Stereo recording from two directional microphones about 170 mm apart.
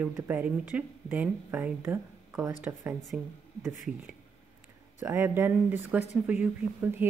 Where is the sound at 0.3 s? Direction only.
10° right (ahead or behind).